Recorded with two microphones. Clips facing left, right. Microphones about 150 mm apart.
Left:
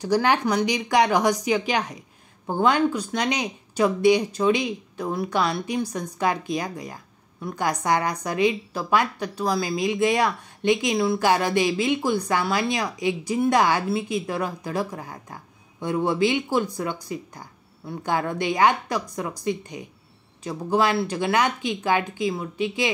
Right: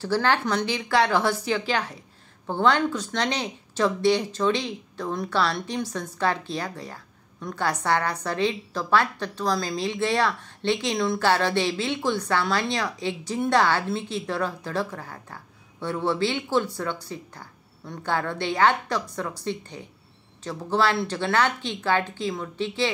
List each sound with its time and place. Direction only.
0.0 s speech: 15° left (ahead or behind)